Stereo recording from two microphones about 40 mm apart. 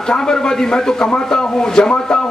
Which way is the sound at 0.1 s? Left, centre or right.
Centre.